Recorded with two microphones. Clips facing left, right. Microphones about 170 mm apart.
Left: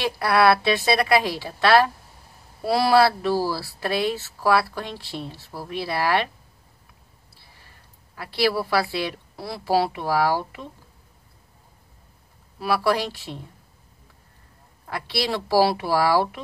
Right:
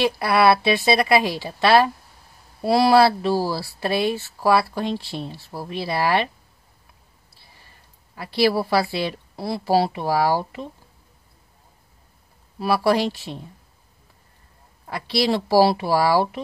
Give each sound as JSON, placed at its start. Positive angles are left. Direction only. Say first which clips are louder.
{"t": 0.2, "sound": "a woman's voice", "louder": "left 1 dB", "side_deg": -15}
{"t": 8.2, "sound": "speech", "louder": "right 3 dB", "side_deg": -25}
{"t": 12.5, "sound": "speech", "louder": "right 3 dB", "side_deg": -25}
{"t": 14.9, "sound": "speech", "louder": "right 5 dB", "side_deg": -25}